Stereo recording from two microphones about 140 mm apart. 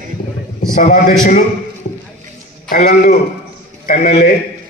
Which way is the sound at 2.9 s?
90° left.